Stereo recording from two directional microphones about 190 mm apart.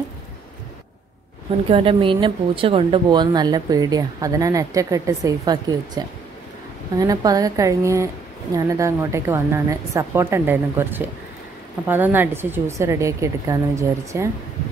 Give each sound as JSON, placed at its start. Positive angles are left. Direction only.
{"t": 1.7, "sound": "speech", "side_deg": -30}